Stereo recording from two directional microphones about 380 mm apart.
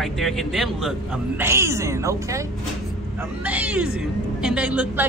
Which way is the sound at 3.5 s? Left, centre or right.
Centre.